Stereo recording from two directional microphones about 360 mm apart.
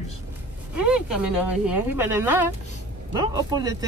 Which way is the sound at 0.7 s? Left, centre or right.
Centre.